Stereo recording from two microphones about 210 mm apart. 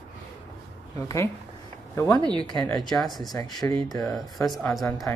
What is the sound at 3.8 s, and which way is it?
Speech, 15° left (ahead or behind).